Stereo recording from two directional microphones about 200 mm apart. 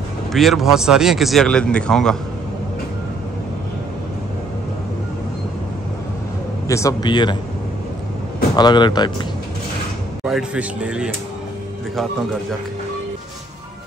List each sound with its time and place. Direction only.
0.3 s speech: centre (ahead or behind)
6.7 s speech: 15° left (ahead or behind)
8.5 s speech: 20° left (ahead or behind)
10.2 s speech: 5° right (ahead or behind)